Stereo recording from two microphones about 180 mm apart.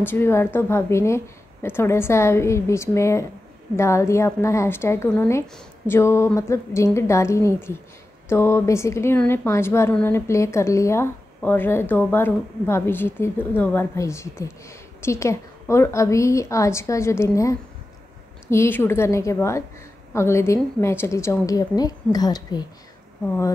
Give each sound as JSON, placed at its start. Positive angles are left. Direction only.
{"t": 0.0, "sound": "a woman's voice", "side_deg": 10}
{"t": 23.2, "sound": "a woman's voice", "side_deg": 10}